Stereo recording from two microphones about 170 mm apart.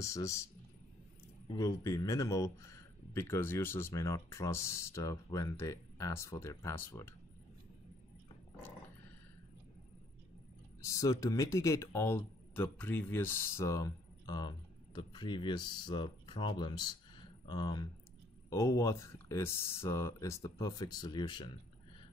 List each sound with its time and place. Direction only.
0.0 s speech: 15° left (ahead or behind)
1.6 s speech: 20° left (ahead or behind)
10.8 s speech: 20° left (ahead or behind)